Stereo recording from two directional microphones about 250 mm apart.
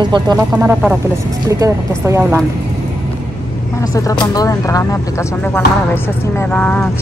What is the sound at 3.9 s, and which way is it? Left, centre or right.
Speech, centre.